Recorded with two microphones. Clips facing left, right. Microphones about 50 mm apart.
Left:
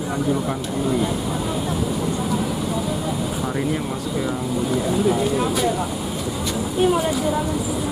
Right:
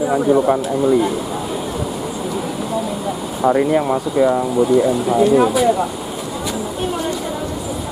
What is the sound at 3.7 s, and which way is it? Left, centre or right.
Speech, right.